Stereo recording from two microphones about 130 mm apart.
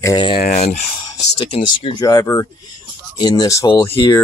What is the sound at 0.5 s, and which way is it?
Speech, 80° left.